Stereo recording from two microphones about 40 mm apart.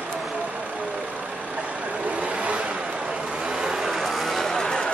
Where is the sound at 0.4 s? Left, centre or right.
Right.